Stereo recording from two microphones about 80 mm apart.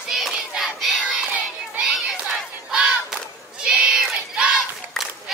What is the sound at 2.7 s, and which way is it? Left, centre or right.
Battle cry, centre.